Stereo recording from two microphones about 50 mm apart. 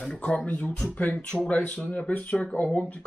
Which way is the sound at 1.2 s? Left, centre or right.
Centre.